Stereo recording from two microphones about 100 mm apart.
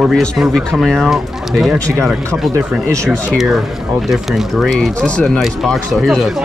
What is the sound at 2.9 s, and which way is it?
Speech, 30° right (ahead or behind).